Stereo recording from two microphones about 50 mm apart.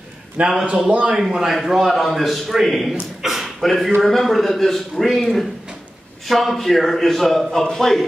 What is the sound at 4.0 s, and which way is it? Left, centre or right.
A man's voice, centre.